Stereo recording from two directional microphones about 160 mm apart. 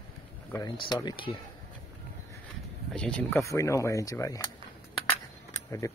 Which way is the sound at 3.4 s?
20° left (ahead or behind).